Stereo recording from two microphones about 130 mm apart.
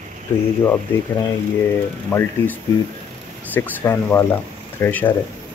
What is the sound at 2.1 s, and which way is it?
Speech, 15° left (ahead or behind).